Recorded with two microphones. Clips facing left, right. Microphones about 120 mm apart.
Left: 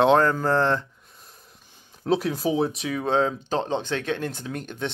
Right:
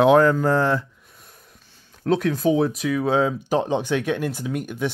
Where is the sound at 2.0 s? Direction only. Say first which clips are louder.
Right 3 dB; 5° left (ahead or behind).